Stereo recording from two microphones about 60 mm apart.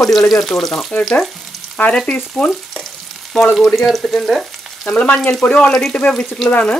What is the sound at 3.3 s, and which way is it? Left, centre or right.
Frying, centre.